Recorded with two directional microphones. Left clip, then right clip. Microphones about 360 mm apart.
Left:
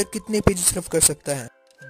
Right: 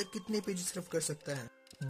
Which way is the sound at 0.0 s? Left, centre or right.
Left.